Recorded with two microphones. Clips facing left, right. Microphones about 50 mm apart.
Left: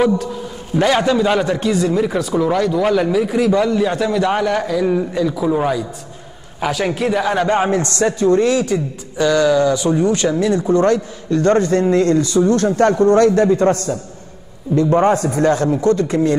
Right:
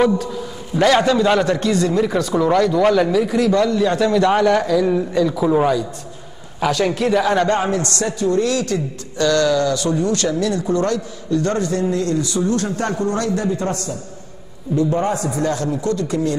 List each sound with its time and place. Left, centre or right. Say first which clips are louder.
0.7 s a man's voice: even; centre
7.6 s speech: left 4 dB; left
8.6 s speech: left 2 dB; centre
11.2 s a man's voice: left 5 dB; left